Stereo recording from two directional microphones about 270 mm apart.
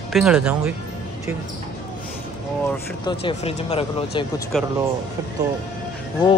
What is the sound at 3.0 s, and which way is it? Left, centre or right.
Speech, centre.